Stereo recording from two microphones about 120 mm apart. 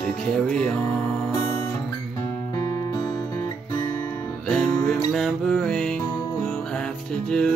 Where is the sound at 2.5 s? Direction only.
30° left (ahead or behind).